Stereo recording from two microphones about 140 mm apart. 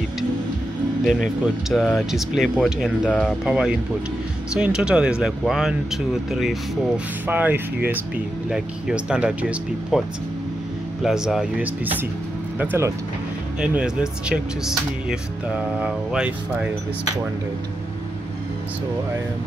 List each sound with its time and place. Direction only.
1.4 s speech: centre (ahead or behind)
7.2 s speech: 10° right (ahead or behind)
13.6 s speech: 5° right (ahead or behind)